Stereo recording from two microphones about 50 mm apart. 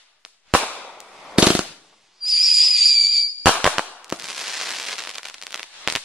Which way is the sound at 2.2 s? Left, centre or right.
Centre.